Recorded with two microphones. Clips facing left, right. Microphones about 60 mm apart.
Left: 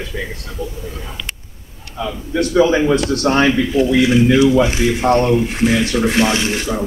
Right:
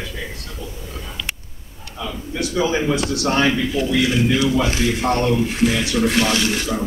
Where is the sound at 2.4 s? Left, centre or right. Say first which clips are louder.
Left 7 dB; left.